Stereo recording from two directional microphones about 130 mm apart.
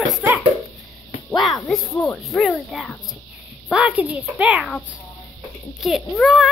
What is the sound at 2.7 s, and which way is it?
A child's voice, centre (ahead or behind).